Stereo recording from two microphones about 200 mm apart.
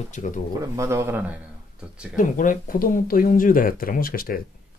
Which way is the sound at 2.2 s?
40° left (ahead or behind).